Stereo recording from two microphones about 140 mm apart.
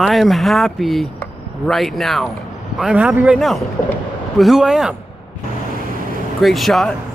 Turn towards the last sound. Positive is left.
turn(degrees=0)  # may be behind; listen again after turning